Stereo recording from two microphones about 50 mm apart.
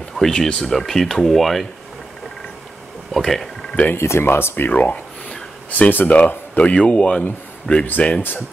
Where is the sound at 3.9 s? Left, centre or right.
Left.